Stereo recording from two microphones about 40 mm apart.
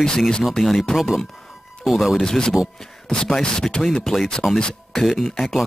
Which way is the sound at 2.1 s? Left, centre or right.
Centre.